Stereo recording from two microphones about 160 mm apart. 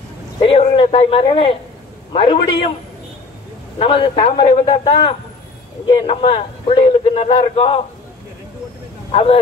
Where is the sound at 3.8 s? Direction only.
35° left (ahead or behind).